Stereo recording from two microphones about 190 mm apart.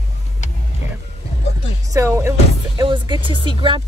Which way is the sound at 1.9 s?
15° right (ahead or behind).